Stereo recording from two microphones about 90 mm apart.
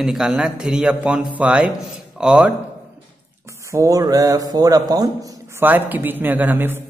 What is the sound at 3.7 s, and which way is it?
Speech, 35° right (ahead or behind).